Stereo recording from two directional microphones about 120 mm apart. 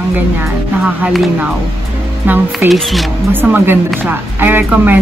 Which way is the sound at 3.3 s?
20° right (ahead or behind).